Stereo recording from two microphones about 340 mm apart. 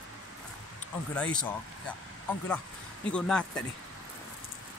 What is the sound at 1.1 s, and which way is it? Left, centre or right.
Speech, centre.